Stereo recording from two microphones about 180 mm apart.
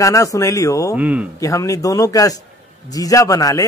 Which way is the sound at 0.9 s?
10° right (ahead or behind).